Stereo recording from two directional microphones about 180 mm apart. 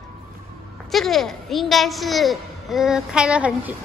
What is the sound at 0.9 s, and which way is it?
A woman's voice, centre (ahead or behind).